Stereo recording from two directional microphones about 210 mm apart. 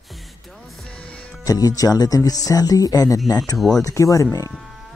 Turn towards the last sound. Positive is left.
turn(degrees=15)  # may be behind; listen again after turning